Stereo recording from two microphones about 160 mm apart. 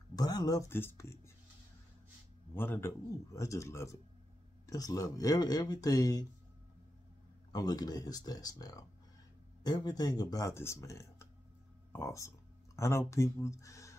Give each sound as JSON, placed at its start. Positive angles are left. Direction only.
{"t": 0.1, "sound": "speech", "side_deg": 25}
{"t": 2.5, "sound": "a man's voice", "side_deg": 15}
{"t": 7.5, "sound": "speech", "side_deg": 25}